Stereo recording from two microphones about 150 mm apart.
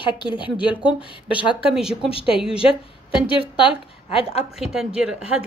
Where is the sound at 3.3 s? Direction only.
35° left (ahead or behind).